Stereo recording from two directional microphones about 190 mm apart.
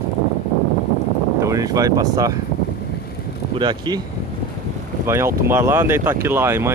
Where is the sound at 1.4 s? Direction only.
15° right (ahead or behind).